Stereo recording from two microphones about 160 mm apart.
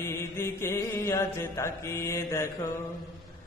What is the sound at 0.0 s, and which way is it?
Chant, 15° left (ahead or behind).